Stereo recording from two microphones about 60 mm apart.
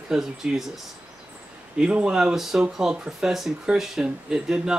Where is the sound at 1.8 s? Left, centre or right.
Centre.